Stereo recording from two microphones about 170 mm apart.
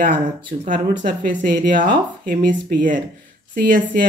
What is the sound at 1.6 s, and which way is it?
Speech, 50° right (ahead or behind).